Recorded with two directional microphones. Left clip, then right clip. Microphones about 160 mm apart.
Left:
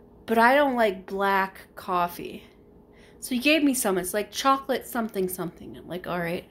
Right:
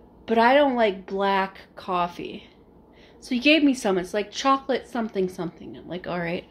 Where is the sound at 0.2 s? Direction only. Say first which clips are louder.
Right 1 dB; 5° right (ahead or behind).